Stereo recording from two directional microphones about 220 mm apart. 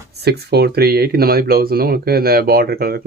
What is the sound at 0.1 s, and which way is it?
Speech, 45° right (ahead or behind).